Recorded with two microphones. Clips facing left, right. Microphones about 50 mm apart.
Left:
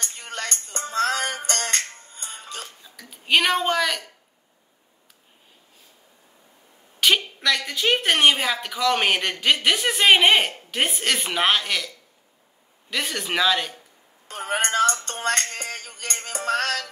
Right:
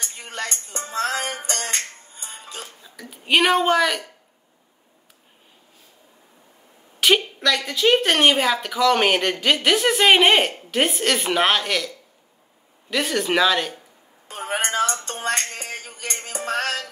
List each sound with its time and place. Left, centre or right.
0.0 s music: left
2.8 s speech: centre
7.0 s a sound: centre
7.4 s speech: centre
12.9 s speech: centre
14.2 s a sound: left
14.9 s music: left
16.4 s music: right